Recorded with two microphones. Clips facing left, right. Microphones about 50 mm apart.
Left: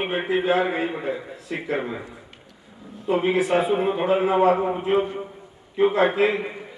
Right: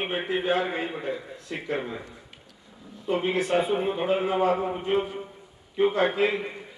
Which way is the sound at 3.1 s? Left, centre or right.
Centre.